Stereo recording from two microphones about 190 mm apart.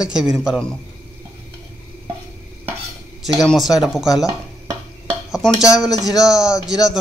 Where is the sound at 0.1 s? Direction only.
5° right (ahead or behind).